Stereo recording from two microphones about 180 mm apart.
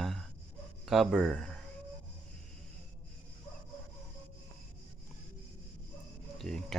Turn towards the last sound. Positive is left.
turn(degrees=0)  # may be behind; listen again after turning